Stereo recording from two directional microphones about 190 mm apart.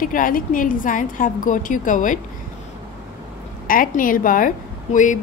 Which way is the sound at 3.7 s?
45° left (ahead or behind).